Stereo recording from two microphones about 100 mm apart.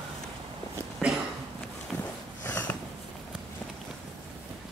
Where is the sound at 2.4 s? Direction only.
20° left (ahead or behind).